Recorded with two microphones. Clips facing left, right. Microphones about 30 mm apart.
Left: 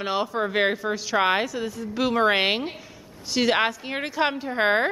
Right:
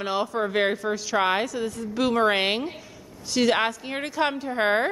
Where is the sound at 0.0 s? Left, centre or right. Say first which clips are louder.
Even; centre.